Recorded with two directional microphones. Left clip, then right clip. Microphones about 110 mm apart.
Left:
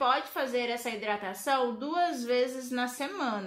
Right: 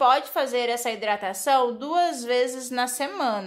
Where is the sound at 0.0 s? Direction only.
40° right (ahead or behind).